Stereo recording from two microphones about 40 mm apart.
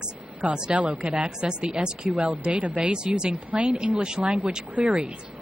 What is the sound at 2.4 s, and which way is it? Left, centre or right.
Speech, right.